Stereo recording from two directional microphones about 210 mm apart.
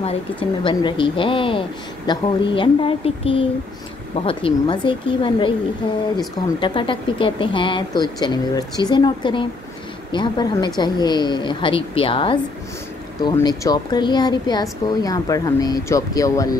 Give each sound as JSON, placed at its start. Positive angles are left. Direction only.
{"t": 0.7, "sound": "speech", "side_deg": 25}